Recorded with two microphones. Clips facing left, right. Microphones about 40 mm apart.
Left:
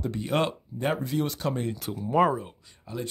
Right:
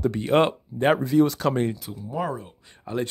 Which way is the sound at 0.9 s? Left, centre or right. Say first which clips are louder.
Right 9 dB; right.